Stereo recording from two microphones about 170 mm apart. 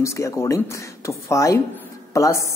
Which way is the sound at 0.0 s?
15° left (ahead or behind).